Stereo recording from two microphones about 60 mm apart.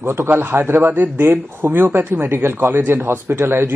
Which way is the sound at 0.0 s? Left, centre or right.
Right.